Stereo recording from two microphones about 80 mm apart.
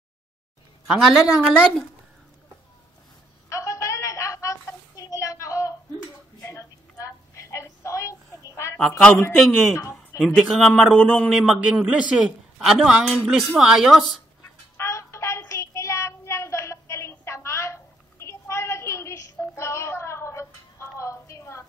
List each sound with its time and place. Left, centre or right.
0.8 s speech: centre
3.4 s a sound: left
8.7 s a man's voice: centre
11.2 s a man's voice: centre
11.5 s speech: centre
12.5 s a man's voice: centre
14.8 s child singing: left
17.1 s a sound: left
19.5 s child singing: left